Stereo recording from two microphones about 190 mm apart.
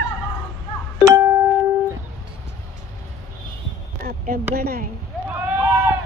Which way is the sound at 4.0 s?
50° right (ahead or behind).